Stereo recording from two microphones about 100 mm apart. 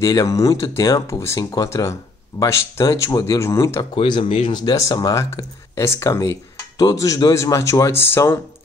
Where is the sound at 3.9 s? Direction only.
60° left (ahead or behind).